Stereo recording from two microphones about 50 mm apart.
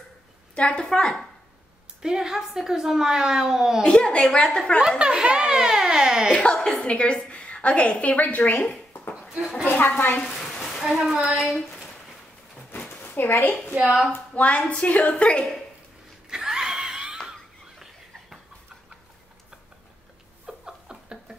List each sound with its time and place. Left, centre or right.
0.6 s a woman's voice: left
0.8 s a woman's voice: centre
2.0 s speech: centre
3.8 s a woman's voice: centre
4.8 s speech: centre
6.3 s a woman's voice: left
9.7 s a woman's voice: left
10.6 s a sound: centre
11.3 s speech: centre
13.0 s a woman's voice: left
14.3 s a woman's voice: left
16.3 s a sound: centre
20.4 s chuckle: centre